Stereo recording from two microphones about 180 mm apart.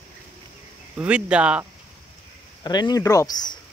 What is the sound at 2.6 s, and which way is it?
Speech, 20° left (ahead or behind).